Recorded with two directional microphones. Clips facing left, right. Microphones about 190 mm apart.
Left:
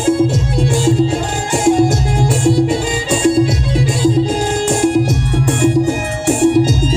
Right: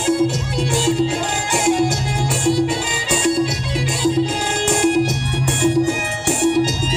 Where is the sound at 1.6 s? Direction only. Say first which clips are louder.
Left 6 dB; 50° left (ahead or behind).